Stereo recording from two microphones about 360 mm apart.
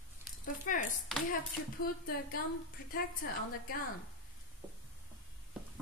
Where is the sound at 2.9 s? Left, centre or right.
Left.